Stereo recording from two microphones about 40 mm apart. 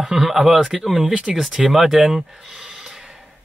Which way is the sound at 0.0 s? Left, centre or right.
Centre.